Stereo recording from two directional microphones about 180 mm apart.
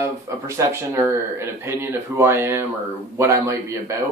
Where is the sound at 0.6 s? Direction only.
15° right (ahead or behind).